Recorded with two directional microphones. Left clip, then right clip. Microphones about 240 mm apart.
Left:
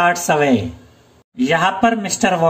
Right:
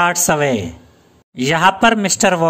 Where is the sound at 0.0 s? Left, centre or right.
Right.